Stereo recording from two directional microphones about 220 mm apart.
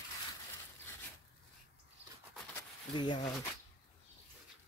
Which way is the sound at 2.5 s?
20° left (ahead or behind).